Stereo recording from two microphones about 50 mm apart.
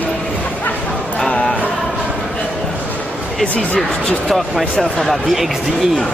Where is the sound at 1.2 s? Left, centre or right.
Centre.